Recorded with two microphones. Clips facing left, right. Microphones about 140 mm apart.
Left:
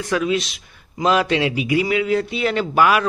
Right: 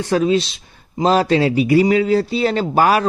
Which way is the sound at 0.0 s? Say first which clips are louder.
Right 4 dB; 30° right (ahead or behind).